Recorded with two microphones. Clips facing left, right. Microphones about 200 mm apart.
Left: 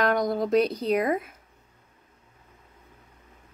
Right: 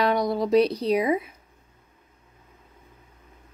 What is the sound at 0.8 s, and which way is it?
Speech, centre (ahead or behind).